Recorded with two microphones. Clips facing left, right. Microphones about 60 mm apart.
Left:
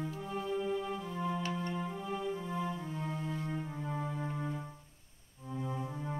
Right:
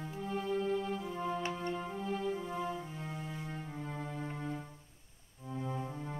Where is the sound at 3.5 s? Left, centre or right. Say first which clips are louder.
Left 3 dB; centre.